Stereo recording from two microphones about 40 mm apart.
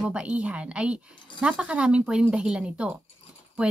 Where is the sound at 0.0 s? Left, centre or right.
Right.